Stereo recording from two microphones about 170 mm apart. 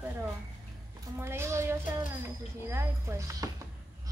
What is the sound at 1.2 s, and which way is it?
Speech, 15° right (ahead or behind).